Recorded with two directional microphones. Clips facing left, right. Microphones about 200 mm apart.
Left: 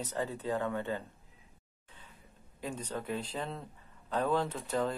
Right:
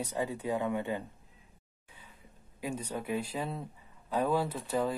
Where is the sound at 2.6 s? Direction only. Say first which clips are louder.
Right 2 dB; 10° right (ahead or behind).